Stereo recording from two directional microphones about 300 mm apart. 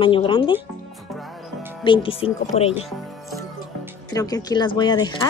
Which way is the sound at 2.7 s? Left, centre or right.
Centre.